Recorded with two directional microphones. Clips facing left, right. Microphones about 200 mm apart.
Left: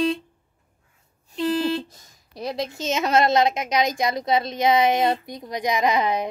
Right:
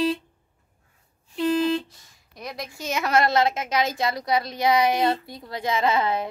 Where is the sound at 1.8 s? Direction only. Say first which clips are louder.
Left 5 dB; 40° left (ahead or behind).